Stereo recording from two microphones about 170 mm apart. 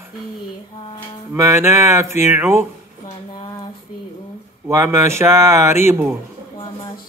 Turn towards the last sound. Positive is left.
turn(degrees=-15)  # may be behind; listen again after turning